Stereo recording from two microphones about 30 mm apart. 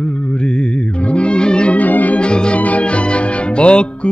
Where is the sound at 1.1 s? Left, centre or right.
Left.